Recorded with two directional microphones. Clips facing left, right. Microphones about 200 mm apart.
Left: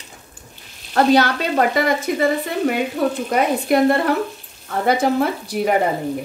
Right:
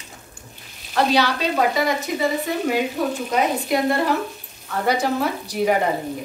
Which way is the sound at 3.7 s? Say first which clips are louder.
Left 7 dB; 55° left (ahead or behind).